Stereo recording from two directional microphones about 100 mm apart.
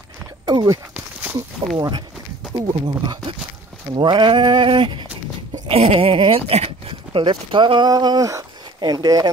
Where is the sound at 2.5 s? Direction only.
50° right (ahead or behind).